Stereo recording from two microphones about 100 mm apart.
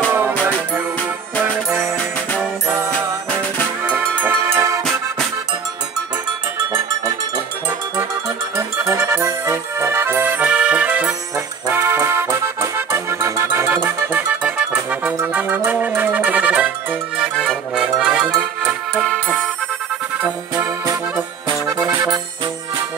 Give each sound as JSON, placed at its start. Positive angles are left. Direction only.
{"t": 0.3, "sound": "music", "side_deg": 15}
{"t": 1.7, "sound": "music", "side_deg": 5}
{"t": 2.9, "sound": "music", "side_deg": 15}
{"t": 3.8, "sound": "music", "side_deg": -15}
{"t": 8.5, "sound": "music", "side_deg": -25}
{"t": 11.6, "sound": "accordion", "side_deg": -20}
{"t": 15.2, "sound": "music", "side_deg": -15}
{"t": 17.5, "sound": "music", "side_deg": 0}
{"t": 20.2, "sound": "music", "side_deg": -20}